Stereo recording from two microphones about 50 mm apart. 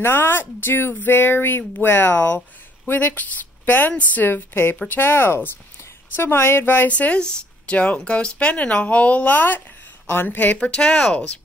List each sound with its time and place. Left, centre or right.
0.0 s a woman's voice: left
6.9 s a woman's voice: left
10.6 s speech: centre